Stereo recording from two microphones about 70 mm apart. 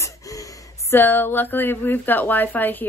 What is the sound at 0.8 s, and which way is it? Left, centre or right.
Speech, left.